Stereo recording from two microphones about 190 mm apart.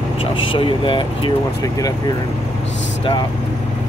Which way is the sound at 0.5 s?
25° left (ahead or behind).